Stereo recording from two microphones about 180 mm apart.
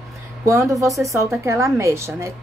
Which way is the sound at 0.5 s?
15° right (ahead or behind).